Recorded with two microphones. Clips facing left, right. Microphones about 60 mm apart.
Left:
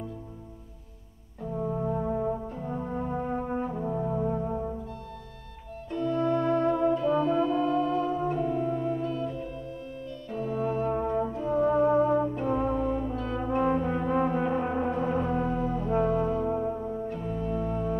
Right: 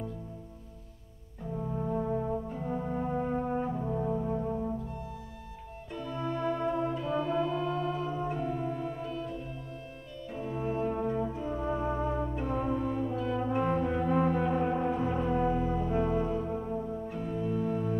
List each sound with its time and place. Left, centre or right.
1.5 s brass instrument: centre
2.5 s brass instrument: centre
5.9 s brass instrument: centre
10.3 s brass instrument: centre
10.9 s brass instrument: centre
15.4 s brass instrument: centre
16.4 s music: centre
17.1 s organ: centre